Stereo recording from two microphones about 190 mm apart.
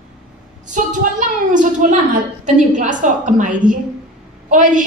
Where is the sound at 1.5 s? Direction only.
40° right (ahead or behind).